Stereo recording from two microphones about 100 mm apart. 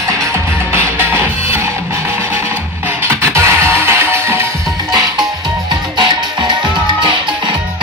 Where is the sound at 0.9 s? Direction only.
20° right (ahead or behind).